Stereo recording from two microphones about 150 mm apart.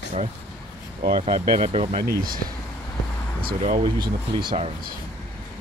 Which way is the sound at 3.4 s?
65° right (ahead or behind).